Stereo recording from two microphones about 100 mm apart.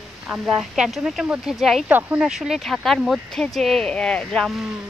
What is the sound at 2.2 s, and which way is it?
Speech, 5° right (ahead or behind).